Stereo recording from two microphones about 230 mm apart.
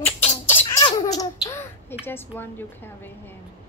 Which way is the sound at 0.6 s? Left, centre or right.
Centre.